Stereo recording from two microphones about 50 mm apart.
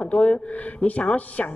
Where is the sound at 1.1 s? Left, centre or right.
Left.